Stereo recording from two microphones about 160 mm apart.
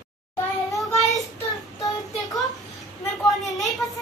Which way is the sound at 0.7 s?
Centre (ahead or behind).